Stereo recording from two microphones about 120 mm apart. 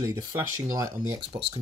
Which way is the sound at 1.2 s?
45° right (ahead or behind).